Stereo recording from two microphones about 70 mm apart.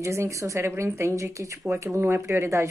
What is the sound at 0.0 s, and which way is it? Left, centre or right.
A woman's voice, right.